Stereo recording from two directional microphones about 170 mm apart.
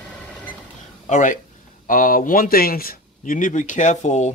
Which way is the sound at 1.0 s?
45° left (ahead or behind).